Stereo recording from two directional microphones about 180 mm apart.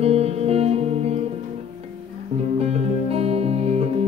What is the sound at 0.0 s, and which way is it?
Music, 35° right (ahead or behind).